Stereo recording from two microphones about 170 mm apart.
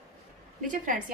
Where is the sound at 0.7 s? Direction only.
50° right (ahead or behind).